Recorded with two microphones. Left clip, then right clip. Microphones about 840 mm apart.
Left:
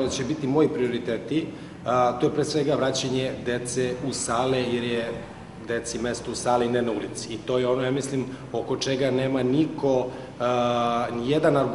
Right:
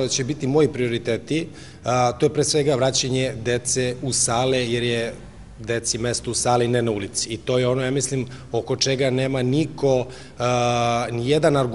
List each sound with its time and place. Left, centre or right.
0.0 s a man's voice: right